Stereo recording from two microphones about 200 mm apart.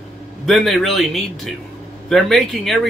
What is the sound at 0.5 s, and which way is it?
A man's voice, centre (ahead or behind).